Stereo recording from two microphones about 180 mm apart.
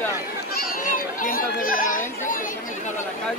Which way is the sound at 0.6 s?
50° left (ahead or behind).